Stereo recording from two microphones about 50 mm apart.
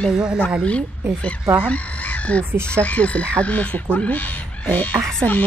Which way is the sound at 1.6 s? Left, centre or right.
Left.